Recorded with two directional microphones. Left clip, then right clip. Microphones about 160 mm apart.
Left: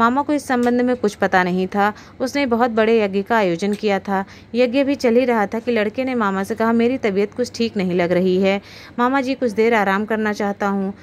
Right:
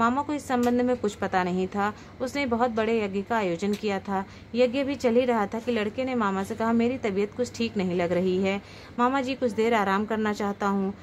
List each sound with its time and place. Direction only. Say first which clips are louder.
0.0 s a woman's voice: left 8 dB; 30° left (ahead or behind)